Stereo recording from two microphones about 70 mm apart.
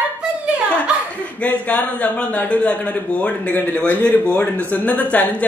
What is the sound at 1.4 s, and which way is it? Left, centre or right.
A woman's voice, left.